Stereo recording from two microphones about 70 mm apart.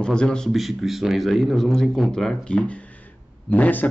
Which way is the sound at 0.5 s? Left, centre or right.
Centre.